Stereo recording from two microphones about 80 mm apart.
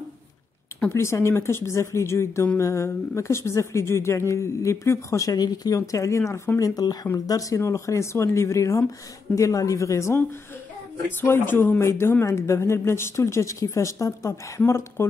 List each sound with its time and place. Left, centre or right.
0.8 s a woman's voice: left
5.8 s a woman's voice: left
6.6 s a woman's voice: left
11.1 s a woman's voice: left